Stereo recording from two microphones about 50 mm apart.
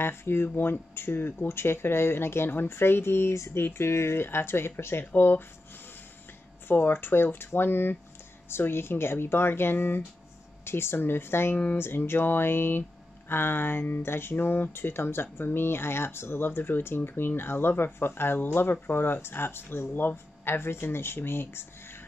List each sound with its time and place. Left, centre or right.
0.0 s speech: left
6.7 s speech: left